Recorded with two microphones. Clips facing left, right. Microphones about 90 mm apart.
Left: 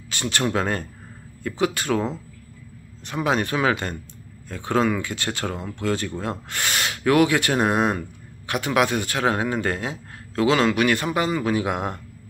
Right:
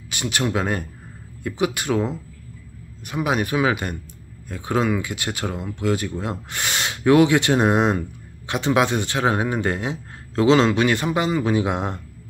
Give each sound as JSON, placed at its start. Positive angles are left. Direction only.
{"t": 0.1, "sound": "a man's voice", "side_deg": -15}